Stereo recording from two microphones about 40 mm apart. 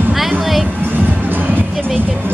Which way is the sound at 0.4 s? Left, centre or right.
Centre.